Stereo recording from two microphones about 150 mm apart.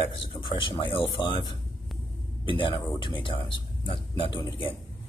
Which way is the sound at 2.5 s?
35° left (ahead or behind).